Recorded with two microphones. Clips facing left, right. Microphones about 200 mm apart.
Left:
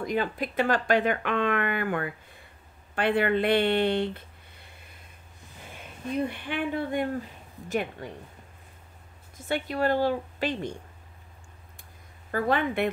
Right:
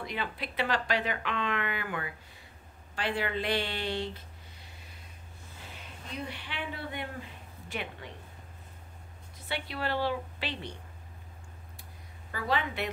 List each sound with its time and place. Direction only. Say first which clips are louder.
0.0 s speech: left 8 dB; 45° left (ahead or behind)
9.4 s speech: left 8 dB; 45° left (ahead or behind)
12.3 s speech: left 6 dB; 50° left (ahead or behind)